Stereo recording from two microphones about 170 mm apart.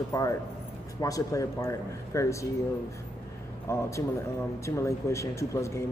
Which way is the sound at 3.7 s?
15° left (ahead or behind).